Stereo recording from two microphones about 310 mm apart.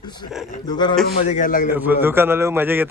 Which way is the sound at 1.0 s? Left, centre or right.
Left.